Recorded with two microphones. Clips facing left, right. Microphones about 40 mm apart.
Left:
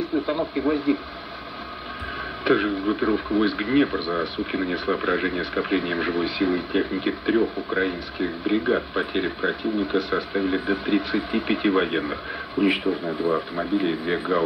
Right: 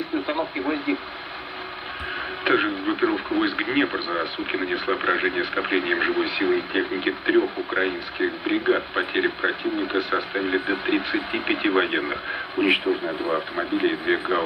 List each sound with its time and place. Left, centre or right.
0.1 s a sound: right
0.6 s speech: right
2.1 s music: right
3.0 s speech: right